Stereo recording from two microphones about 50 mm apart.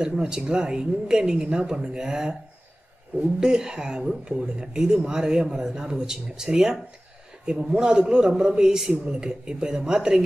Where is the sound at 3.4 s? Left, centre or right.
Centre.